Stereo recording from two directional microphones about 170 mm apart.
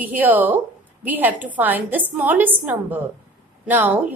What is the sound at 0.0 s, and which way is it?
A woman's voice, 10° right (ahead or behind).